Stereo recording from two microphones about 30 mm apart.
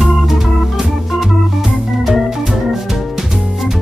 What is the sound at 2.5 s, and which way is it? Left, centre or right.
Music, centre.